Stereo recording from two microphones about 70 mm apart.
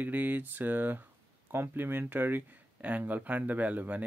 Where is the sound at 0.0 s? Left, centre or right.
Right.